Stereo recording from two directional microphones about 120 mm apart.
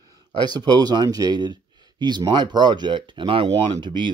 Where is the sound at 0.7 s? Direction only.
35° right (ahead or behind).